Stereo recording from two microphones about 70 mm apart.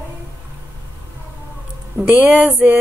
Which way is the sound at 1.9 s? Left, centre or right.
Right.